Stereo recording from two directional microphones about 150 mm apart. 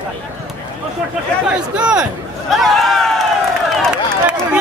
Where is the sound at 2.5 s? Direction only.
Centre (ahead or behind).